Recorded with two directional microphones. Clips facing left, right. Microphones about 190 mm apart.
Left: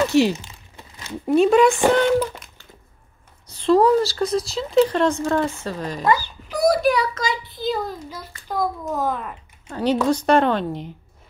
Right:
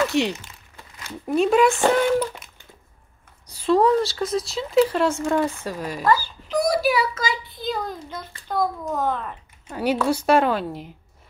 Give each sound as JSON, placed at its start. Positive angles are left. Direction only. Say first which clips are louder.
{"t": 0.0, "sound": "speech", "louder": "left 4 dB", "side_deg": 0}
{"t": 0.4, "sound": "crumpling", "louder": "left 3 dB", "side_deg": 20}
{"t": 1.2, "sound": "speech", "louder": "left 3 dB", "side_deg": 0}
{"t": 2.1, "sound": "a sound", "louder": "left 2 dB", "side_deg": 0}
{"t": 3.4, "sound": "speech", "louder": "left 2 dB", "side_deg": -5}
{"t": 6.5, "sound": "a child's voice", "louder": "left 2 dB", "side_deg": 5}
{"t": 9.7, "sound": "a woman's voice", "louder": "left 2 dB", "side_deg": -10}